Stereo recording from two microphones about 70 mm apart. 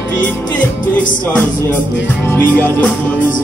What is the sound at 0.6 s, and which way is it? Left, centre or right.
Music, centre.